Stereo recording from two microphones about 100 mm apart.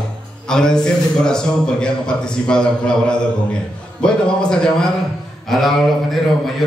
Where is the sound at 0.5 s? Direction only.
5° left (ahead or behind).